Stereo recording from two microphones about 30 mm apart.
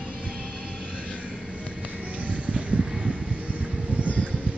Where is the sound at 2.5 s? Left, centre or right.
Right.